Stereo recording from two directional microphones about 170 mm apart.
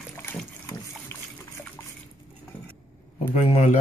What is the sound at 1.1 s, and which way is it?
Gush, 15° left (ahead or behind).